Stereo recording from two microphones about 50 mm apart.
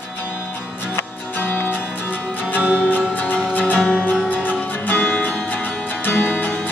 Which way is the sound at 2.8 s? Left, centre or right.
Left.